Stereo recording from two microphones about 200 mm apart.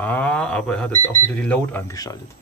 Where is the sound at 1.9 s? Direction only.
15° left (ahead or behind).